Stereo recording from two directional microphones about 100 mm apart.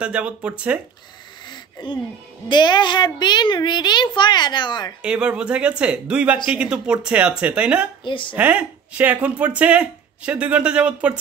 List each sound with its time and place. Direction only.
0.0 s speech: 10° right (ahead or behind)
1.5 s a sound: 50° left (ahead or behind)
2.5 s a child's voice: 50° left (ahead or behind)
5.0 s speech: 10° right (ahead or behind)
8.0 s speech: 55° left (ahead or behind)
8.4 s speech: 15° right (ahead or behind)